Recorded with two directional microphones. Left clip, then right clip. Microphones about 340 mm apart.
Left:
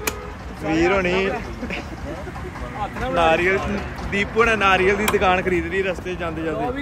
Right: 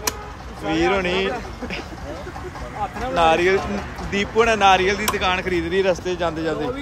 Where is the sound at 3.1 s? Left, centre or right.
Centre.